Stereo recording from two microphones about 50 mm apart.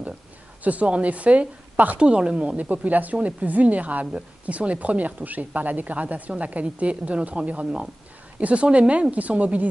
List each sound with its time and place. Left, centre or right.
0.7 s speech: right